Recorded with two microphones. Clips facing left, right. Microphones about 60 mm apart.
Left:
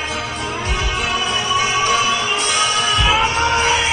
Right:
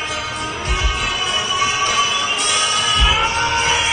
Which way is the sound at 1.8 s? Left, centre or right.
Left.